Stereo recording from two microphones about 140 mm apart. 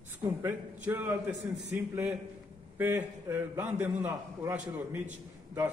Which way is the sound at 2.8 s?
15° right (ahead or behind).